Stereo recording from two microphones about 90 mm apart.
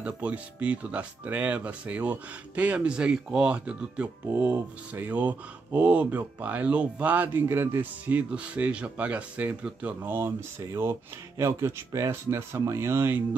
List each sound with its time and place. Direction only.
0.0 s speech: 15° right (ahead or behind); by 13.2 s 30° right (ahead or behind)